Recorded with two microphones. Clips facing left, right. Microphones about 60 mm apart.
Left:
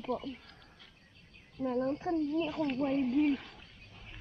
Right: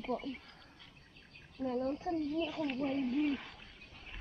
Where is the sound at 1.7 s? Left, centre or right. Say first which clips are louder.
Left 4 dB; left.